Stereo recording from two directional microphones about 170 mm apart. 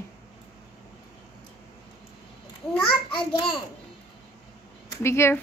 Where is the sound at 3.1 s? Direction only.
30° left (ahead or behind).